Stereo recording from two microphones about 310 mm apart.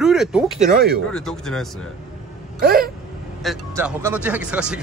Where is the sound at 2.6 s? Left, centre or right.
Right.